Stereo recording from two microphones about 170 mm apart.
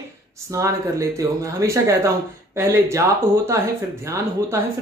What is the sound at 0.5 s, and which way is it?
Speech, 20° right (ahead or behind).